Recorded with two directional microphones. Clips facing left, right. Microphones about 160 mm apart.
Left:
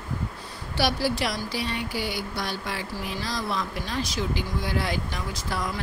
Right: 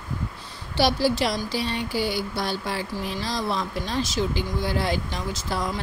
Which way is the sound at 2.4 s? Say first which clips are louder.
Right 4 dB; 30° right (ahead or behind).